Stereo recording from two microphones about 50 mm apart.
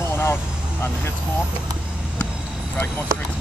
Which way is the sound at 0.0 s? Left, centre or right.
Left.